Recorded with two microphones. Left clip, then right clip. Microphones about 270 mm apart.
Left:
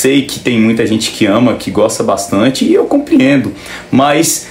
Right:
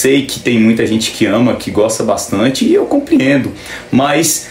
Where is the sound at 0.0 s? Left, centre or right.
Centre.